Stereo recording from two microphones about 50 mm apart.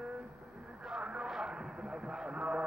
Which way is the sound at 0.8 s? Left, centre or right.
Centre.